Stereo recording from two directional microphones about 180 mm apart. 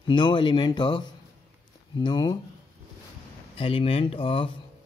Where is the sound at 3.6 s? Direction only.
30° left (ahead or behind).